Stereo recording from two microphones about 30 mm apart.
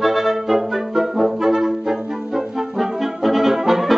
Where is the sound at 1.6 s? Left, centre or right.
Centre.